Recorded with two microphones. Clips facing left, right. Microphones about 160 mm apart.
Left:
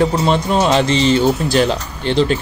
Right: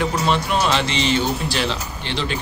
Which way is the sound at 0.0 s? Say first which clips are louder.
Left 5 dB; 30° left (ahead or behind).